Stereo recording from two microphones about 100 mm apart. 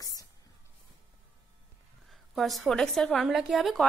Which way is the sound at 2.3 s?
Centre (ahead or behind).